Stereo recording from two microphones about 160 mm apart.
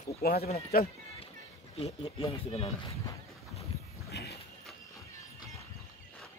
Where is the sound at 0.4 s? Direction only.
40° left (ahead or behind).